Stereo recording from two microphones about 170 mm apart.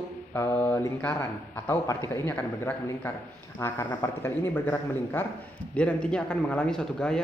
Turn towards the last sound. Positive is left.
turn(degrees=5)  # may be behind; listen again after turning